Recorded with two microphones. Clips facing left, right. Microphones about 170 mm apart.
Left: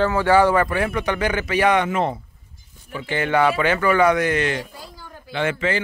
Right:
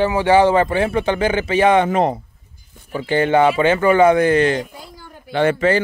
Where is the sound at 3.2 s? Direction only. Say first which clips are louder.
Right 3 dB; 25° right (ahead or behind); by 5.8 s 40° right (ahead or behind).